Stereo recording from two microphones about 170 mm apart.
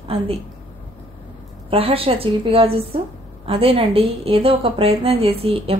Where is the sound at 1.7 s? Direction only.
35° right (ahead or behind).